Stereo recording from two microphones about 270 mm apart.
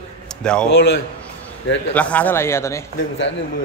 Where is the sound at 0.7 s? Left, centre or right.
Left.